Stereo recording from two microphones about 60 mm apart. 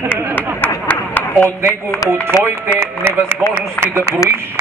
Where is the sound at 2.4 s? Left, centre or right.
Right.